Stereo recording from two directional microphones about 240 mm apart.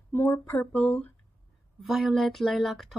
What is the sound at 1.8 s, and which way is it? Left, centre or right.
Speech, centre.